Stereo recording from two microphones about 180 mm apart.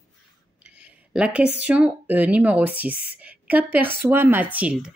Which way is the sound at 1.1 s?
5° right (ahead or behind).